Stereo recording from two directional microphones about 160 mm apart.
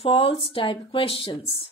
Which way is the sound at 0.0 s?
35° left (ahead or behind).